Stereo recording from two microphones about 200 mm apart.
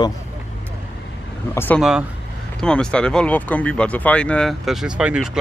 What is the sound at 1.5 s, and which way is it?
Speech, 10° left (ahead or behind).